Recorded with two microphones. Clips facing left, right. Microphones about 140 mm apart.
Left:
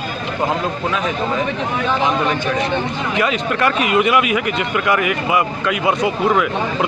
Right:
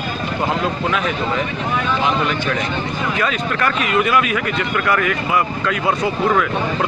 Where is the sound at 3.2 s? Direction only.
20° left (ahead or behind).